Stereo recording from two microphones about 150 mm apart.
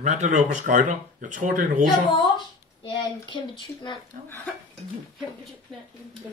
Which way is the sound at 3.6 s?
30° left (ahead or behind).